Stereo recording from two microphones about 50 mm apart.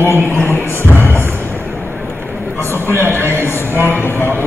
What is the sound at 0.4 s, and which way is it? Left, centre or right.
Music, left.